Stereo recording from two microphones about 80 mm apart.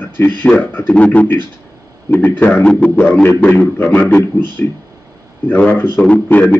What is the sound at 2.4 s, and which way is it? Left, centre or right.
Speech, centre.